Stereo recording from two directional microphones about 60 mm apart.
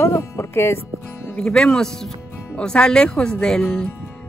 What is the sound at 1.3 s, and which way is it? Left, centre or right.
Speech, centre.